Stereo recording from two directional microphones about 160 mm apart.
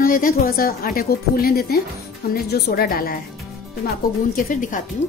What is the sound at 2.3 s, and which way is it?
Speech, 80° left.